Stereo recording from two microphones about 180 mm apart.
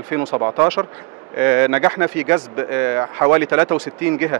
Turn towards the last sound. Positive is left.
turn(degrees=-10)  # may be behind; listen again after turning